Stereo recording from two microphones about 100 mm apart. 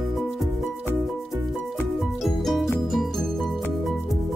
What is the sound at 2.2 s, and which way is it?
Music, centre (ahead or behind).